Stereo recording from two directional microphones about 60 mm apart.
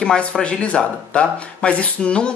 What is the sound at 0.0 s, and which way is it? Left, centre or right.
Speech, centre.